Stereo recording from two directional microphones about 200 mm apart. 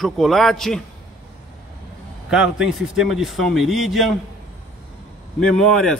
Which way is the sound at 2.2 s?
5° right (ahead or behind).